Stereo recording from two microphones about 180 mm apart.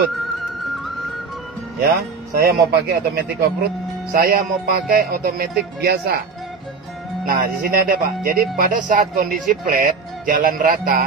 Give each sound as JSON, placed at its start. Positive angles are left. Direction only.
{"t": 1.8, "sound": "speech", "side_deg": -60}
{"t": 7.2, "sound": "speech", "side_deg": -50}